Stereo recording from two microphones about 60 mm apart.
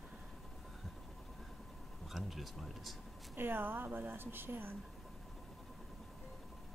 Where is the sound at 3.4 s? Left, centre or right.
Right.